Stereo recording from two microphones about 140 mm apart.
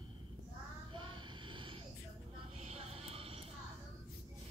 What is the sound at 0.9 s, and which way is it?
Vehicle, 35° right (ahead or behind).